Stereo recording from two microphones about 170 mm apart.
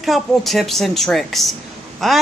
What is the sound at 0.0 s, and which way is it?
Speech, centre (ahead or behind).